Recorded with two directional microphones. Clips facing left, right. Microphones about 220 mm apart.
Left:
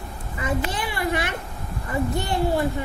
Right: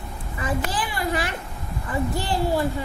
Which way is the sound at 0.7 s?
25° left (ahead or behind).